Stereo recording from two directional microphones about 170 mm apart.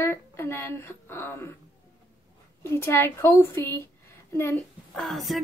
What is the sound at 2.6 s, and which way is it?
A woman's voice, 15° left (ahead or behind).